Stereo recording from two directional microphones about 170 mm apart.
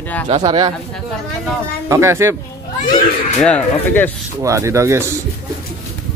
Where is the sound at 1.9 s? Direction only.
15° right (ahead or behind).